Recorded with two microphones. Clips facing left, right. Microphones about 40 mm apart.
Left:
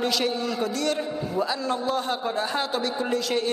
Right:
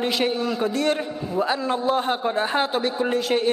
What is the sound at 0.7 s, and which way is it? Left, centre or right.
A man's voice, right.